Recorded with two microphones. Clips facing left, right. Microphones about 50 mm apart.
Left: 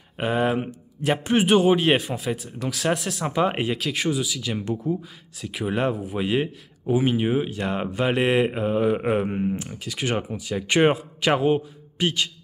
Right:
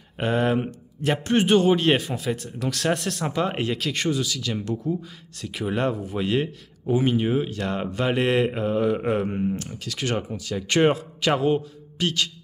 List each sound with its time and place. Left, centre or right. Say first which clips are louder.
0.2 s speech: even; centre
3.3 s speech: left 4 dB; centre